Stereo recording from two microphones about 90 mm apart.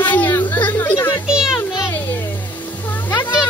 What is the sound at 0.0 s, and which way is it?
Chatter, 20° left (ahead or behind).